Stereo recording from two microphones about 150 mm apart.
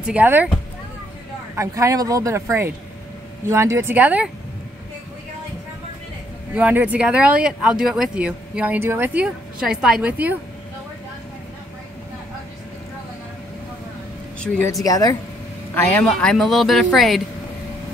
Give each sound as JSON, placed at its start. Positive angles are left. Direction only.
{"t": 0.0, "sound": "speech", "side_deg": -10}
{"t": 1.6, "sound": "speech", "side_deg": -20}
{"t": 6.5, "sound": "speech", "side_deg": -10}
{"t": 14.7, "sound": "speech", "side_deg": 20}
{"t": 15.7, "sound": "speech", "side_deg": 10}